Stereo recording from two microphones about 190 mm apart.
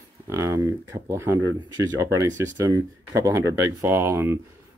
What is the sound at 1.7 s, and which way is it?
Speech, 15° right (ahead or behind).